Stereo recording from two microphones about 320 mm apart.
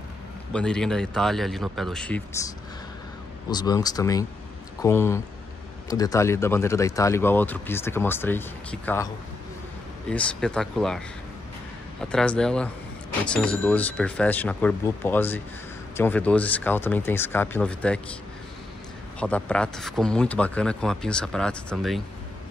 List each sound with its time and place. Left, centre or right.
0.5 s speech: centre
12.0 s speech: centre
19.1 s speech: centre